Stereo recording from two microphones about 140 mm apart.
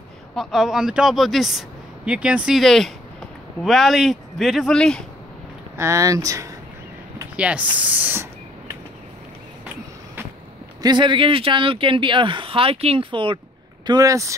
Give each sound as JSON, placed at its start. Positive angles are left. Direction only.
{"t": 0.4, "sound": "speech", "side_deg": 0}
{"t": 5.8, "sound": "speech", "side_deg": -20}
{"t": 7.3, "sound": "speech", "side_deg": -10}
{"t": 10.8, "sound": "speech", "side_deg": -35}
{"t": 13.8, "sound": "speech", "side_deg": -25}